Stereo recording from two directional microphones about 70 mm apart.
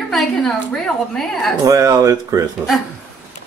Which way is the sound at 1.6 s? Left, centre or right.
Right.